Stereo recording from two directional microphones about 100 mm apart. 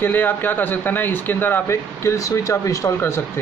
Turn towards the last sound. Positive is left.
turn(degrees=30)  # may be behind; listen again after turning